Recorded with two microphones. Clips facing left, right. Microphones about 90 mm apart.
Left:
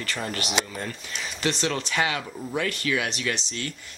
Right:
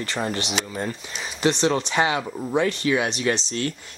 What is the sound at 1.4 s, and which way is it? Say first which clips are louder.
Speech: right 6 dB; 30° right (ahead or behind).